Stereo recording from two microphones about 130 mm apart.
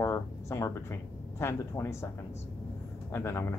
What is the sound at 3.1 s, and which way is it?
Speech, 20° left (ahead or behind).